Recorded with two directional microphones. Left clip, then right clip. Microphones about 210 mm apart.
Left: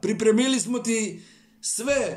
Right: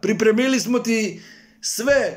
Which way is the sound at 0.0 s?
15° left (ahead or behind).